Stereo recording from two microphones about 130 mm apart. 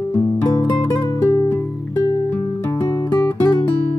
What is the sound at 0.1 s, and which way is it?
Music, 25° left (ahead or behind).